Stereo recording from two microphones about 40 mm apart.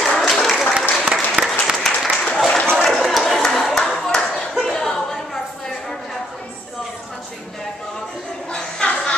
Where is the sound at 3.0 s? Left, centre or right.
Centre.